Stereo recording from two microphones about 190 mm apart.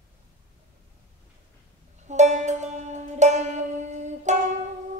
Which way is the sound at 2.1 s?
40° right (ahead or behind).